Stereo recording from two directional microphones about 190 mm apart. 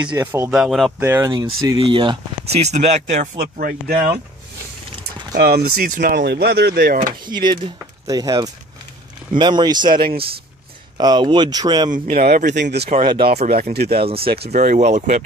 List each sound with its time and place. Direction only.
0.2 s a man's voice: 10° right (ahead or behind)
1.0 s speech: 15° right (ahead or behind); by 3.3 s 35° right (ahead or behind)
3.3 s speech: 50° right (ahead or behind)
5.3 s speech: 55° right (ahead or behind)
6.1 s speech: 60° right (ahead or behind)
7.2 s speech: 25° right (ahead or behind)
9.9 s speech: 50° right (ahead or behind)
11.0 s speech: 20° right (ahead or behind)
11.9 s speech: 50° right (ahead or behind)
13.0 s speech: 25° right (ahead or behind)
13.5 s speech: 50° right (ahead or behind)
14.0 s speech: 30° right (ahead or behind)